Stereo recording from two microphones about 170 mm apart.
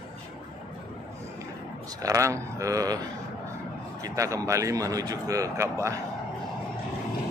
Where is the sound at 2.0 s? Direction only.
20° right (ahead or behind).